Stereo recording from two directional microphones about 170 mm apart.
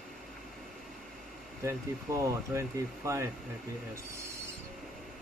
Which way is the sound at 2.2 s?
15° right (ahead or behind).